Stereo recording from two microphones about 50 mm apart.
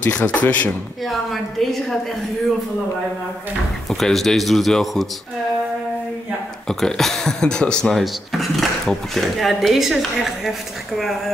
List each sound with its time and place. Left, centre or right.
0.0 s speech: left
1.0 s speech: centre
4.0 s speech: centre
6.7 s speech: centre
7.9 s speech: centre